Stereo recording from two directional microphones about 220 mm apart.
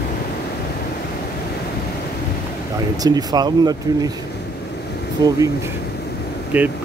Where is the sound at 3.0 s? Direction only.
20° right (ahead or behind).